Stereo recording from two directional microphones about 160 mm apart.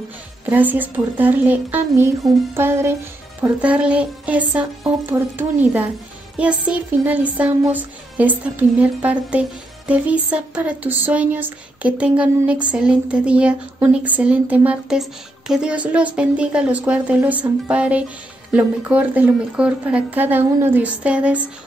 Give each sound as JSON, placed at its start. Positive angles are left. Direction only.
{"t": 0.5, "sound": "speech", "side_deg": -10}